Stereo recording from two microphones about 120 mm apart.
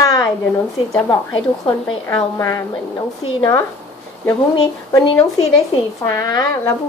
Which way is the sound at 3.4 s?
25° left (ahead or behind).